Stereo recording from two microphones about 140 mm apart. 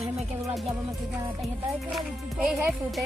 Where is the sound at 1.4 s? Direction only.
5° right (ahead or behind).